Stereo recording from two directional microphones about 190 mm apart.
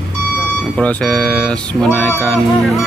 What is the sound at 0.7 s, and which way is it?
Speech, 5° left (ahead or behind).